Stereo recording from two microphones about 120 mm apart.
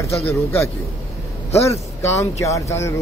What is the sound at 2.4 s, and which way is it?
Speech, 25° left (ahead or behind).